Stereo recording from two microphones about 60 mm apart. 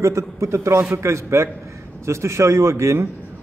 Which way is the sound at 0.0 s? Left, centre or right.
Right.